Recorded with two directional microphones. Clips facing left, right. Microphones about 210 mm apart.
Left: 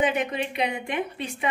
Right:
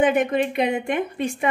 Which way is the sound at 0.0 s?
50° right (ahead or behind).